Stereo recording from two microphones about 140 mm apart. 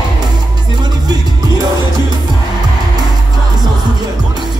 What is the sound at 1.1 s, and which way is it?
Music, 30° right (ahead or behind).